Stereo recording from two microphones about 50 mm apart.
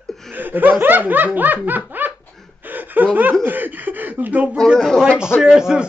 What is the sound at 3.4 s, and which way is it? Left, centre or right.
Laughter, right.